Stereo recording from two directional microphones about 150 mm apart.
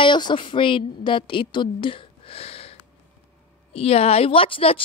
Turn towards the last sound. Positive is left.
turn(degrees=40)  # may be behind; listen again after turning